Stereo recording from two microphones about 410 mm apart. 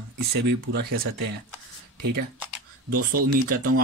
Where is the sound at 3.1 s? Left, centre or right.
Right.